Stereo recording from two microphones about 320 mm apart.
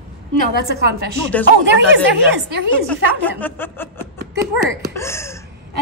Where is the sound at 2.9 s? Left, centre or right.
Centre.